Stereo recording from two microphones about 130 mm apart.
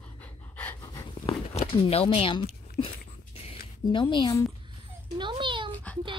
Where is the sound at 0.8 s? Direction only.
25° left (ahead or behind).